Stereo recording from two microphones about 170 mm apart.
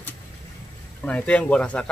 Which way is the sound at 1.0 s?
5° left (ahead or behind).